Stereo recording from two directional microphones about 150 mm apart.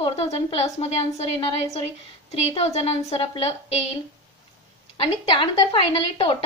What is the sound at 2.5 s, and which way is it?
A woman's voice, 45° left (ahead or behind).